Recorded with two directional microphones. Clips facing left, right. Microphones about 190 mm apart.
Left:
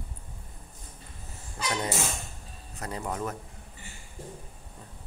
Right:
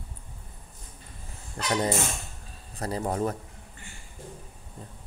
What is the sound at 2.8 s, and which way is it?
Speech, 35° right (ahead or behind).